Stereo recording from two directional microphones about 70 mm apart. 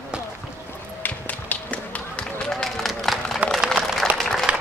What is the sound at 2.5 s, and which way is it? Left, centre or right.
Run, centre.